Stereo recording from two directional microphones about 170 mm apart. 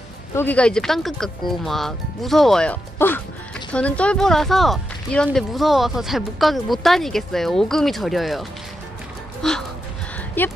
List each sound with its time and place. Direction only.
0.3 s speech: 10° left (ahead or behind)